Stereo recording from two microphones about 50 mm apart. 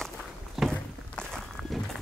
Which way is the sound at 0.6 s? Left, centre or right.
Centre.